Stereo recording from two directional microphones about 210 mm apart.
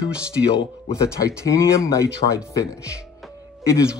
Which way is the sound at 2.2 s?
30° left (ahead or behind).